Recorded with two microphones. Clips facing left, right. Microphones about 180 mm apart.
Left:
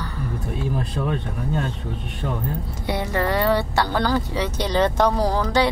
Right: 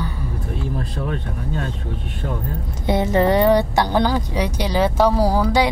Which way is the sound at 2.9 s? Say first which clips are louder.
Right 6 dB; 20° right (ahead or behind).